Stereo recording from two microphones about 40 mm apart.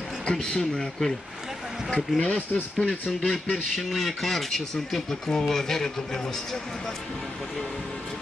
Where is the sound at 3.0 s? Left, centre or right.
Left.